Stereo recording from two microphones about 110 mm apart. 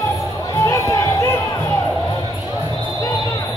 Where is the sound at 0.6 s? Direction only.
30° left (ahead or behind).